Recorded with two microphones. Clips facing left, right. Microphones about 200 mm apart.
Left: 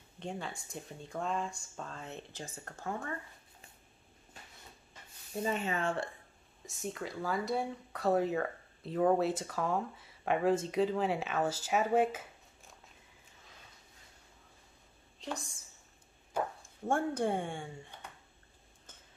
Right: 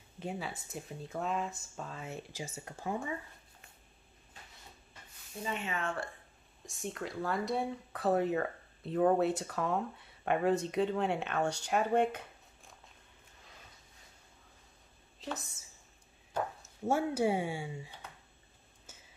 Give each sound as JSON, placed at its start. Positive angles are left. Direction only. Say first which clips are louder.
{"t": 0.2, "sound": "speech", "louder": "right 1 dB", "side_deg": -5}
{"t": 5.4, "sound": "speech", "louder": "left 4 dB", "side_deg": 40}
{"t": 6.6, "sound": "speech", "louder": "even", "side_deg": 0}
{"t": 15.1, "sound": "a woman's voice", "louder": "even", "side_deg": -5}
{"t": 16.6, "sound": "speech", "louder": "right 2 dB", "side_deg": -5}
{"t": 18.9, "sound": "a sound", "louder": "right 1 dB", "side_deg": -10}